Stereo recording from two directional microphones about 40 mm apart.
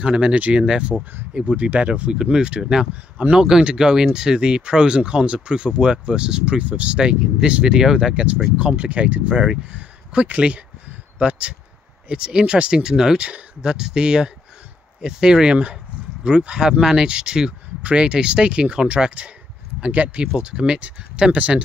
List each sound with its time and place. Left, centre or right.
0.0 s speech: right
0.3 s speech: right
0.6 s speech: right
7.0 s speech: right
19.9 s speech: right
20.5 s speech: right
20.8 s speech: right